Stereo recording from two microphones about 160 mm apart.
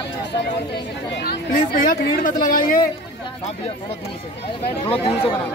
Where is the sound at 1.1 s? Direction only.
75° left (ahead or behind).